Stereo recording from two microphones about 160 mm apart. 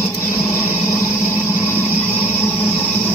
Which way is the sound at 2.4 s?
15° left (ahead or behind).